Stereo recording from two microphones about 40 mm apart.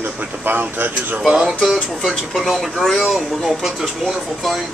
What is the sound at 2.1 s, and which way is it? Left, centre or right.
Speech, centre.